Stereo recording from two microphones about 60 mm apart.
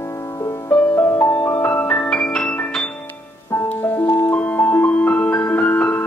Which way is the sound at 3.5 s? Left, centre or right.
Left.